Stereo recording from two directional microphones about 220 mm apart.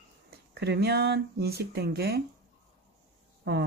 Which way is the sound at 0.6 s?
50° right (ahead or behind).